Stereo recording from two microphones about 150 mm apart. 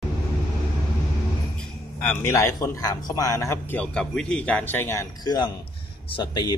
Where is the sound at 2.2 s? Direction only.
20° left (ahead or behind).